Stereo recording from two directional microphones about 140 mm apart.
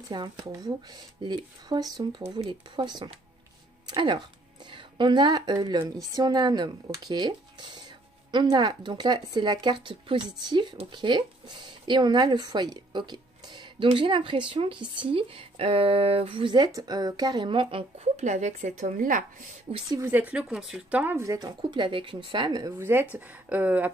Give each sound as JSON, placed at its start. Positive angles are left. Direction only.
{"t": 0.1, "sound": "speech", "side_deg": -30}
{"t": 19.7, "sound": "speech", "side_deg": -40}
{"t": 20.1, "sound": "speech", "side_deg": -10}
{"t": 22.8, "sound": "speech", "side_deg": -15}